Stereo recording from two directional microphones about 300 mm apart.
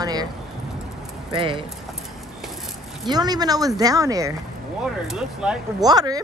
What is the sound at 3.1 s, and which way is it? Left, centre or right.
Speech, centre.